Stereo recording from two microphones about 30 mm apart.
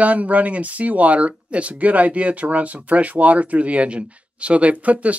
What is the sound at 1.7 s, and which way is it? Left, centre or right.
Speech, right.